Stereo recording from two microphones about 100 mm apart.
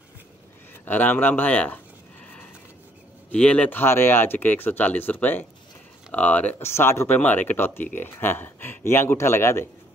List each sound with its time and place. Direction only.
0.8 s speech: 15° left (ahead or behind)
3.3 s speech: 10° left (ahead or behind)